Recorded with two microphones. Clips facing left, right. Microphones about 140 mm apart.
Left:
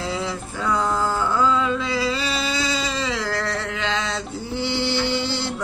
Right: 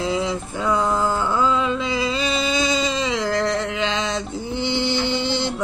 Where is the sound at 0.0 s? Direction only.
20° right (ahead or behind).